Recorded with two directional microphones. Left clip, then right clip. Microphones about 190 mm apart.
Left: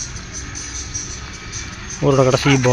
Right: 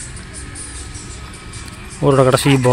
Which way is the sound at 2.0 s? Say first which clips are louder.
Right 2 dB; 5° right (ahead or behind).